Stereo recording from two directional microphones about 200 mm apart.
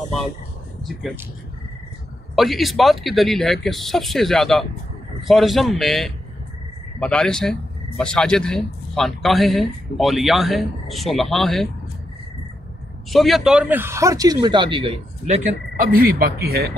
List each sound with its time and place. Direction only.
2.3 s speech: centre (ahead or behind)
13.1 s speech: centre (ahead or behind); by 16.7 s 50° right (ahead or behind)